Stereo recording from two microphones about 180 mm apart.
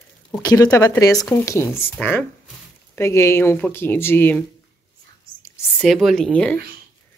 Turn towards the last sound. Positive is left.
turn(degrees=5)  # may be behind; listen again after turning